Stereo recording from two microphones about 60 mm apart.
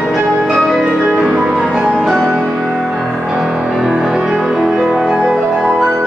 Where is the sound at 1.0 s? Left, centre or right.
Centre.